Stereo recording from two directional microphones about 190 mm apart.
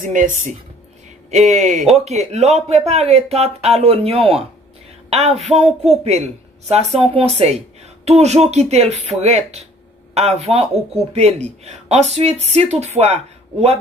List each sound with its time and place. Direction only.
0.0 s speech: 45° right (ahead or behind)
1.3 s speech: 40° right (ahead or behind)